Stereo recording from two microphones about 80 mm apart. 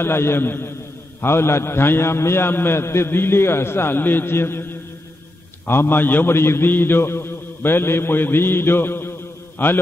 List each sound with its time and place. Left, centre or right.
0.0 s a man's voice: left